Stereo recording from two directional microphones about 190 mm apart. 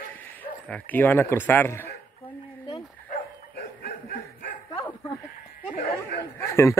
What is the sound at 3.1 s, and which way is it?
Bow-wow, 55° left (ahead or behind).